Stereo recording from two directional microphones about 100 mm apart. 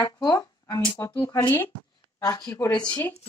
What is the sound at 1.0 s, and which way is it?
Speech, 30° left (ahead or behind).